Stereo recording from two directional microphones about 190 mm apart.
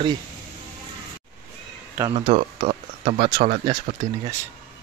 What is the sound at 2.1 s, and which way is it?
Speech, 30° right (ahead or behind).